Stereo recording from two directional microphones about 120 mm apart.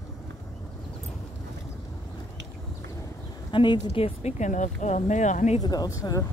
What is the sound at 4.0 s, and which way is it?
Speech, 75° left (ahead or behind).